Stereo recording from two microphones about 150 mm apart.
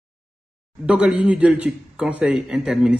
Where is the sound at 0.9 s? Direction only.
5° right (ahead or behind).